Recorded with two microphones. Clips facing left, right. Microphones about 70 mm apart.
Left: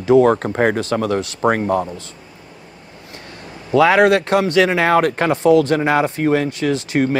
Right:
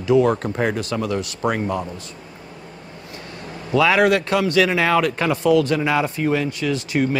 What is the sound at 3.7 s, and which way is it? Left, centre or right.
Speech, left.